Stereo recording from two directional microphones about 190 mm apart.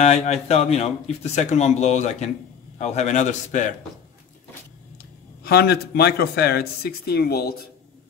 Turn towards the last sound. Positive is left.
turn(degrees=55)  # may be behind; listen again after turning